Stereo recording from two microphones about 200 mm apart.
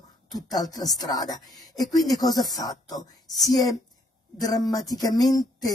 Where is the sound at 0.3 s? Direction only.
20° left (ahead or behind).